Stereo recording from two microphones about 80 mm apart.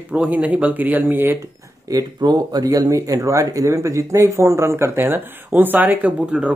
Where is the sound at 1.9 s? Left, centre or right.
Right.